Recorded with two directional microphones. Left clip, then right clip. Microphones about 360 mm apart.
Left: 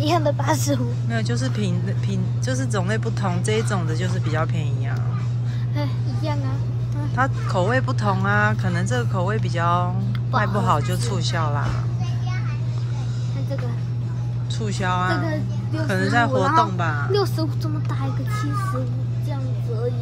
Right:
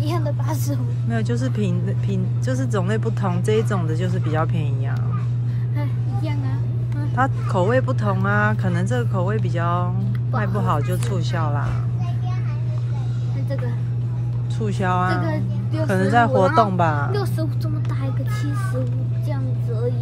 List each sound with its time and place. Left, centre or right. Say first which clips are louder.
0.0 s a woman's voice: left 7 dB; left
1.1 s speech: right 2 dB; centre
7.2 s speech: right 1 dB; centre
14.6 s speech: right 2 dB; centre